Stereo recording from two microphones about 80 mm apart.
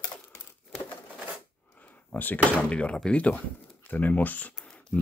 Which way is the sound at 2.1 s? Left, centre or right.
Left.